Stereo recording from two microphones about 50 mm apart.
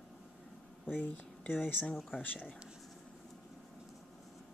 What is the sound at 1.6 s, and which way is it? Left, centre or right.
Speech, left.